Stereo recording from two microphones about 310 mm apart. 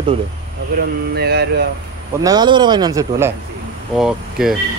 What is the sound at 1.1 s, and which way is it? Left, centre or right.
Speech, right.